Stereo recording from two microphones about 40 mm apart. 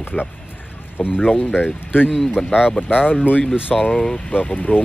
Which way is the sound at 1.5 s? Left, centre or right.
Left.